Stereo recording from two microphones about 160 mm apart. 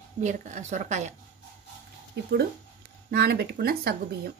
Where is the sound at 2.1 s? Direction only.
90° right; by 4.0 s 75° right (ahead or behind).